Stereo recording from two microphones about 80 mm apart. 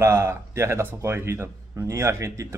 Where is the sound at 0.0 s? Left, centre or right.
Right.